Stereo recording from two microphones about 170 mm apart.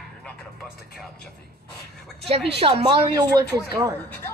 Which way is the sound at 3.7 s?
15° right (ahead or behind).